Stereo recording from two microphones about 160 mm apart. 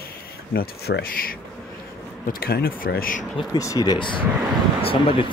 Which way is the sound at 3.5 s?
20° left (ahead or behind).